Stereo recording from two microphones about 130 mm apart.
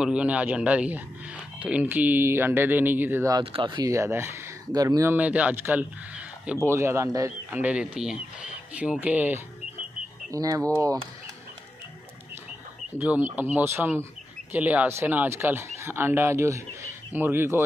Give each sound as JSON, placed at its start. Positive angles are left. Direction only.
{"t": 0.0, "sound": "speech", "side_deg": -10}
{"t": 3.5, "sound": "speech", "side_deg": -35}
{"t": 3.9, "sound": "speech", "side_deg": -20}
{"t": 5.1, "sound": "speech", "side_deg": -10}
{"t": 7.5, "sound": "speech", "side_deg": -10}
{"t": 10.3, "sound": "speech", "side_deg": -25}
{"t": 13.0, "sound": "speech", "side_deg": -15}